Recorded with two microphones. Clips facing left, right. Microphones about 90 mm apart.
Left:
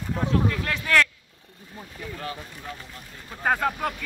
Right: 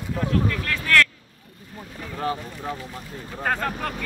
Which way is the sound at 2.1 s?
35° right (ahead or behind).